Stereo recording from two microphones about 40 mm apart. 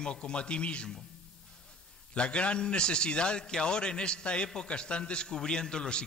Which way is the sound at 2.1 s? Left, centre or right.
Left.